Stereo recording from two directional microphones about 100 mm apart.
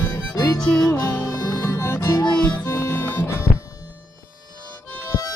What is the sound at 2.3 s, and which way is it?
Music, 15° left (ahead or behind).